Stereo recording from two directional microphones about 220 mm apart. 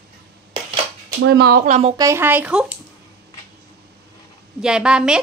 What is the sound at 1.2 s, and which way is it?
Speech, 50° right (ahead or behind).